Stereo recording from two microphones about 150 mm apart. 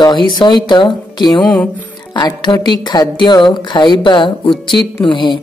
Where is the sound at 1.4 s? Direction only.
10° left (ahead or behind).